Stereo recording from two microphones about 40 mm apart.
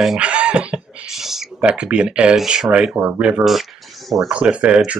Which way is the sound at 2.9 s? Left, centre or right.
Right.